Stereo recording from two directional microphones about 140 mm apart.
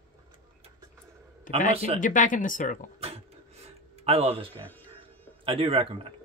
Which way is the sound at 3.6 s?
45° right (ahead or behind).